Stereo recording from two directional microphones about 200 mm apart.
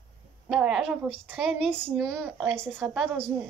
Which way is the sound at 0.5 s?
Centre (ahead or behind).